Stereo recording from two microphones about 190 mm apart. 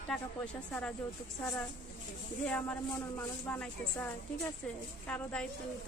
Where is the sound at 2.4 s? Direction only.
5° left (ahead or behind).